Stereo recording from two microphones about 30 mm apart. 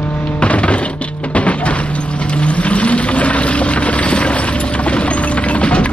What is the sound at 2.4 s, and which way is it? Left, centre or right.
Vehicle, left.